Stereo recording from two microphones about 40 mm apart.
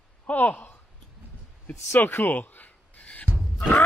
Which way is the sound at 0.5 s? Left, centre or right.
Left.